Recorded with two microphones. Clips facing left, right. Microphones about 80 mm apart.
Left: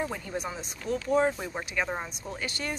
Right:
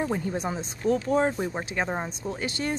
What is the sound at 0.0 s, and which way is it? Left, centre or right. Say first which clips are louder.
Speech: right 5 dB; right.